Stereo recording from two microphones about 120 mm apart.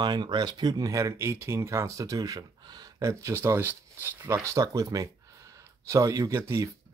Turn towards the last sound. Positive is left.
turn(degrees=-25)  # may be behind; listen again after turning